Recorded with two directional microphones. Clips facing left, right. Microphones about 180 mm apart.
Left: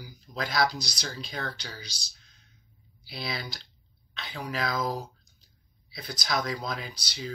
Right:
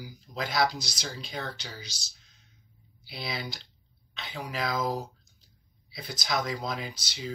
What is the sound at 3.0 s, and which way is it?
Speech, 15° right (ahead or behind).